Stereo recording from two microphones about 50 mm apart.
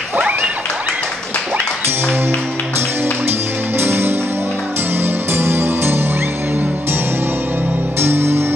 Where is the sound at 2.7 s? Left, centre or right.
Right.